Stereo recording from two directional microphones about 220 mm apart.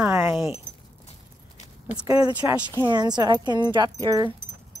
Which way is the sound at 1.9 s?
15° right (ahead or behind).